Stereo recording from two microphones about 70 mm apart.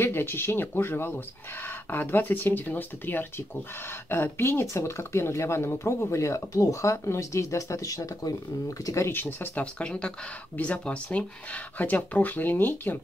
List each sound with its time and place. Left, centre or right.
0.0 s speech: left
6.0 s speech: left
9.2 s speech: left
9.8 s speech: centre